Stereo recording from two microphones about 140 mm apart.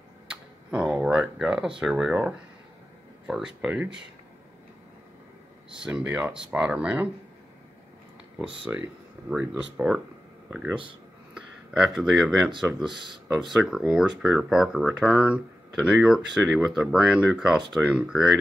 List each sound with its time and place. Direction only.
0.3 s tick-tock: 5° right (ahead or behind)
1.8 s speech: 5° right (ahead or behind)
5.8 s speech: 5° right (ahead or behind)
8.7 s speech: 20° right (ahead or behind)
9.3 s speech: 5° right (ahead or behind)